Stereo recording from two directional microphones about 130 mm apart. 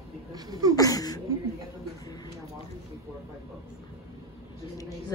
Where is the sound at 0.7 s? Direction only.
30° left (ahead or behind).